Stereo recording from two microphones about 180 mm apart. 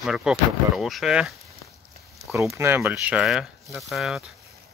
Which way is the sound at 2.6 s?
10° right (ahead or behind).